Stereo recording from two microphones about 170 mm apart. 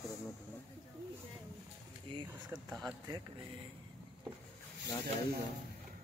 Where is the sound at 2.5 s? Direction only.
Centre (ahead or behind).